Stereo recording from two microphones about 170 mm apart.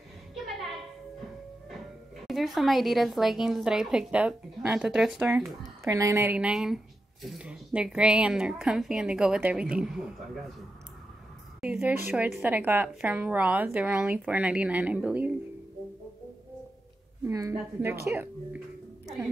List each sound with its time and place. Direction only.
0.3 s a sound: centre (ahead or behind)
2.2 s speech: centre (ahead or behind)
5.9 s speech: 20° right (ahead or behind)
11.6 s a woman's voice: 5° right (ahead or behind)
17.3 s a woman's voice: 20° right (ahead or behind)